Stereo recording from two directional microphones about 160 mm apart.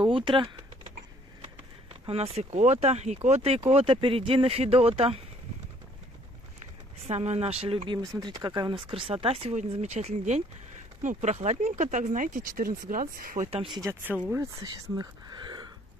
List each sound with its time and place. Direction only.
0.0 s speech: 35° right (ahead or behind)
2.0 s speech: 40° right (ahead or behind)
7.1 s speech: 40° right (ahead or behind)
8.0 s speech: 20° right (ahead or behind); by 13.5 s 60° right (ahead or behind)
13.5 s speech: 35° right (ahead or behind)
14.3 s speech: 20° right (ahead or behind)